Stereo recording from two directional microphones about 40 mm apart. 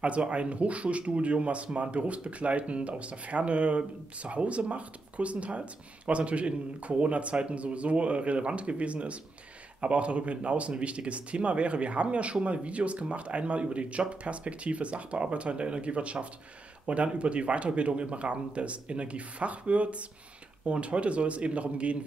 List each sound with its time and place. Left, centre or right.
0.0 s speech: right